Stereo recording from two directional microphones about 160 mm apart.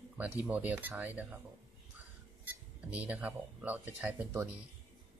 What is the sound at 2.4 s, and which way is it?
Speech, 10° right (ahead or behind).